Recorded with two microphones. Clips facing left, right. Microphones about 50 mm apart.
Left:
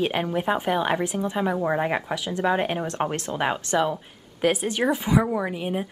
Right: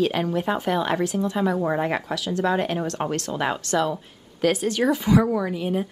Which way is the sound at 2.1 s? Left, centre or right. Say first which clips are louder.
Right 1 dB; left.